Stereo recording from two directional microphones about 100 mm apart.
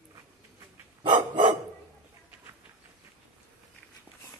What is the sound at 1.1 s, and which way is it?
Dog, 55° right (ahead or behind).